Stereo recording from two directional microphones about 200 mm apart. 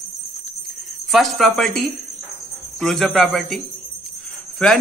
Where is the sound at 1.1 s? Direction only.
Centre (ahead or behind).